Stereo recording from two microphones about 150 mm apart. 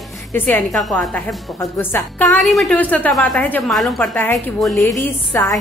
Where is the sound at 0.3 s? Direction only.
15° left (ahead or behind).